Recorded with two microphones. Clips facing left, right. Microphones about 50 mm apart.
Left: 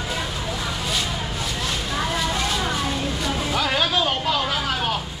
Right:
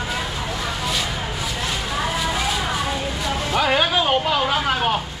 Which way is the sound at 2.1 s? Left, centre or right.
Centre.